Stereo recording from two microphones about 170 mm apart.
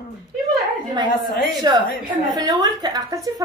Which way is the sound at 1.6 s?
25° right (ahead or behind).